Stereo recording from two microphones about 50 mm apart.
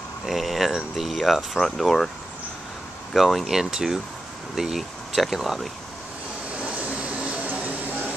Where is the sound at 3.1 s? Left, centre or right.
Centre.